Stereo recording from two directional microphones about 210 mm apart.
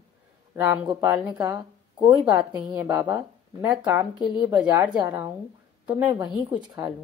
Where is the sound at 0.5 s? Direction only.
10° right (ahead or behind).